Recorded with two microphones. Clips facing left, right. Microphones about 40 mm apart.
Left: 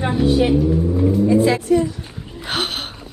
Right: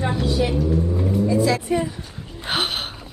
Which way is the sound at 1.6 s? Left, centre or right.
Centre.